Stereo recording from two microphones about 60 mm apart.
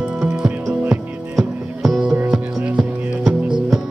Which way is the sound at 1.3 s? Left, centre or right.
Centre.